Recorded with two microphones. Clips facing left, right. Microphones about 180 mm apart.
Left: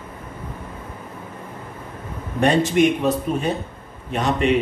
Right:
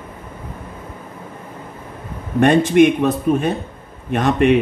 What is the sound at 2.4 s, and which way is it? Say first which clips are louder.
Speech: right 5 dB; 55° right (ahead or behind).